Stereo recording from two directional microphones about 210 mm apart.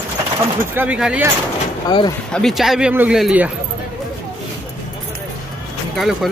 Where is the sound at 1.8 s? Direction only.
20° left (ahead or behind).